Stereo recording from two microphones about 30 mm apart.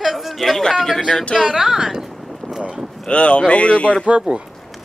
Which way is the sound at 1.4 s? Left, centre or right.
Centre.